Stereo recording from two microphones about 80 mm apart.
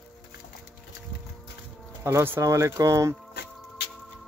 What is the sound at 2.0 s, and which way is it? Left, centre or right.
Speech, right.